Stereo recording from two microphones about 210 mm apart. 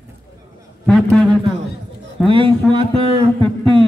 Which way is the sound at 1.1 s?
Centre (ahead or behind).